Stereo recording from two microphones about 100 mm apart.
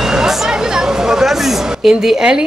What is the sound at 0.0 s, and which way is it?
A woman's voice, 5° right (ahead or behind).